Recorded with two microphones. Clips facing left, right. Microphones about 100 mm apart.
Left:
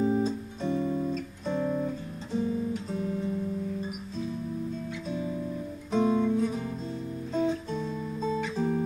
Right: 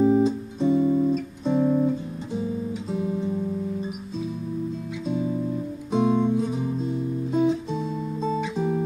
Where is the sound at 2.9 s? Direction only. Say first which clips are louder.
Right 5 dB; 15° right (ahead or behind).